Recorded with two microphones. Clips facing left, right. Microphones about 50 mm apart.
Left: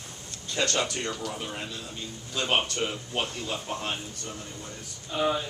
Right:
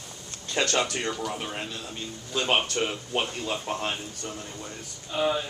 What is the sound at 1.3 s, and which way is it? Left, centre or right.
Speech, right.